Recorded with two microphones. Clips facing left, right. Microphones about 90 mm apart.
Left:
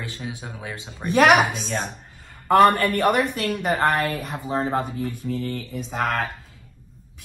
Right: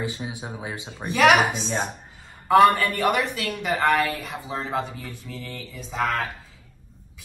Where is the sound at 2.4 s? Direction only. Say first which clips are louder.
Even; 45° left (ahead or behind).